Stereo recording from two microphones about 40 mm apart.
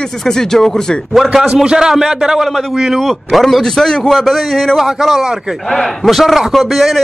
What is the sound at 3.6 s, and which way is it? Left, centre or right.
A man's voice, centre.